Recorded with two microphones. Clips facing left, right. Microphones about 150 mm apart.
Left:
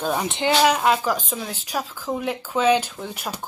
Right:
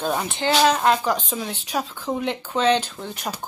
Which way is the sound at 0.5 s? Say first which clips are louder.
Right 1 dB; 10° left (ahead or behind).